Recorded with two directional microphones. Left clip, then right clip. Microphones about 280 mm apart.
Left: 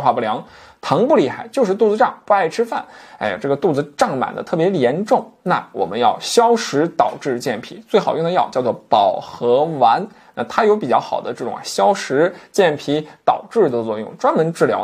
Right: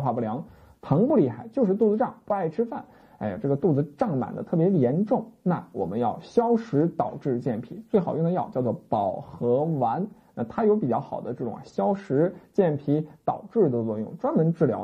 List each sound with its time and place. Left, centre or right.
0.0 s speech: centre
9.6 s speech: left
9.8 s speech: centre
13.7 s speech: left
13.9 s speech: centre